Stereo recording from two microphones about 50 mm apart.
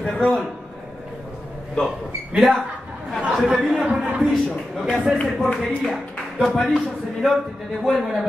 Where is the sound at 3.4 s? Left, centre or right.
Centre.